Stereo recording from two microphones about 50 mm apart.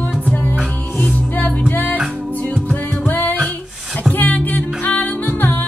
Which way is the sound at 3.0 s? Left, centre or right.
Left.